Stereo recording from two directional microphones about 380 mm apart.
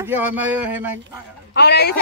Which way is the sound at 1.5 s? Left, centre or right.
Left.